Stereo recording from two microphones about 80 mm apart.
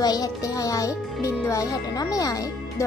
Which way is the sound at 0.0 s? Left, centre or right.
Left.